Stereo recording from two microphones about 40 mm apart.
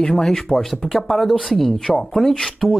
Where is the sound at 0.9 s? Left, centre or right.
Centre.